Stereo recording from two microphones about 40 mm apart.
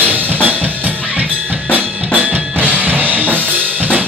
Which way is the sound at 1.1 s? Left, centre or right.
Right.